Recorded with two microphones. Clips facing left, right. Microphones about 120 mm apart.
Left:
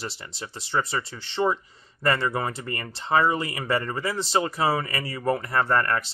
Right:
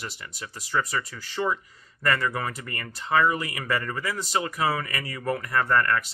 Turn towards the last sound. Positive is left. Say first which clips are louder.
# even
turn(degrees=30)  # may be behind; listen again after turning